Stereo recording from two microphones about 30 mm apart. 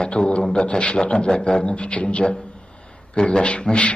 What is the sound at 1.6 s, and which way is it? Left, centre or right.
Speech, left.